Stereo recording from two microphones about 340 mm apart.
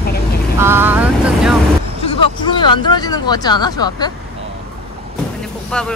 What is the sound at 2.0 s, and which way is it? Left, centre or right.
Speech, centre.